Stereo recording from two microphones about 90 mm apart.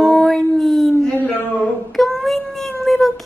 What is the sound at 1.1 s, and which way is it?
Speech, 20° left (ahead or behind).